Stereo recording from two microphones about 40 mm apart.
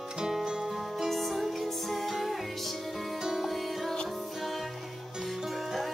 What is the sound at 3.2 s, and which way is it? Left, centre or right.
Music, centre.